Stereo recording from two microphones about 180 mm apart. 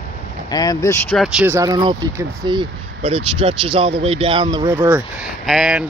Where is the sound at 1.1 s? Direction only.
10° right (ahead or behind); by 4.7 s 25° right (ahead or behind).